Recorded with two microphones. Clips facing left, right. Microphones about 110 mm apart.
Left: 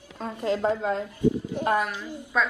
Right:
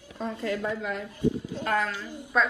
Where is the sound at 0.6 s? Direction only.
35° left (ahead or behind).